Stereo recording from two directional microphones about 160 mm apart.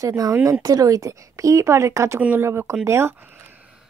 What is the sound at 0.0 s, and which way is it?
A woman's voice, 20° right (ahead or behind).